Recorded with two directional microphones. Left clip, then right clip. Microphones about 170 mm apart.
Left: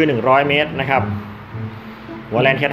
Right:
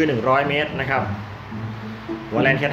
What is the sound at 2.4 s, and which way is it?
Speech, 30° left (ahead or behind).